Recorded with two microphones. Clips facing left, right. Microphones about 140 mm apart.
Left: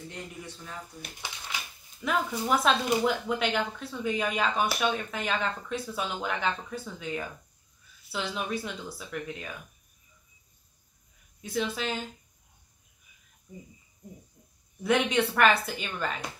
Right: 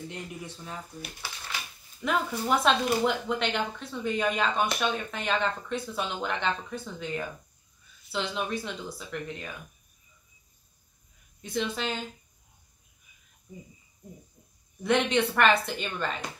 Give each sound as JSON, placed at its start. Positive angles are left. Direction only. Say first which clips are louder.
{"t": 1.2, "sound": "speech", "louder": "left 3 dB", "side_deg": 20}
{"t": 2.0, "sound": "speech", "louder": "even", "side_deg": 0}
{"t": 11.4, "sound": "speech", "louder": "even", "side_deg": 0}
{"t": 14.8, "sound": "speech", "louder": "right 1 dB", "side_deg": 0}